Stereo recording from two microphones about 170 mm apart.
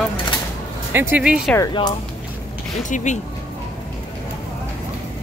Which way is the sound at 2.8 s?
45° left (ahead or behind).